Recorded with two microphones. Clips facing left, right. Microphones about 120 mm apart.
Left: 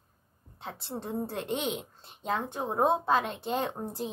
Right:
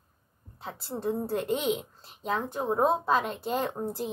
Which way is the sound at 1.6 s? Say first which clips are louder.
Right 4 dB; centre (ahead or behind).